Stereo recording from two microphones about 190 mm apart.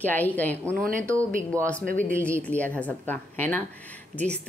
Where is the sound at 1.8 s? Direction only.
45° right (ahead or behind).